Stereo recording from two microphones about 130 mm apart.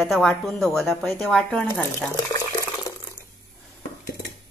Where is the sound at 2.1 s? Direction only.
25° left (ahead or behind).